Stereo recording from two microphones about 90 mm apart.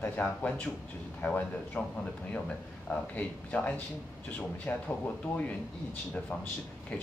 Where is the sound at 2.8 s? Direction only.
15° left (ahead or behind).